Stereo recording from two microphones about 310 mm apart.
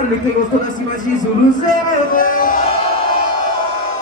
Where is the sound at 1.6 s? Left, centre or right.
Left.